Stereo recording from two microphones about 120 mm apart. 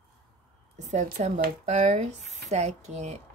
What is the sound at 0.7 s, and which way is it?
Speech, 80° right.